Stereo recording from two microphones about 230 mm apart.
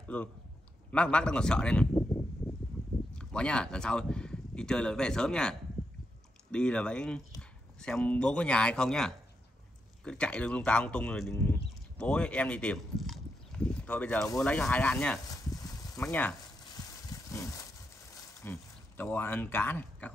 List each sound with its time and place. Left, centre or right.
0.1 s speech: centre
3.1 s speech: centre
15.2 s a sound: centre
16.0 s speech: centre
16.6 s a sound: centre
18.4 s speech: centre